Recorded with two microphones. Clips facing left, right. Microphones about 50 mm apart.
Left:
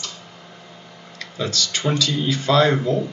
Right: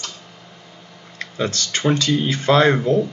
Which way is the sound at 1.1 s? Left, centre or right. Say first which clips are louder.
Right 2 dB; right.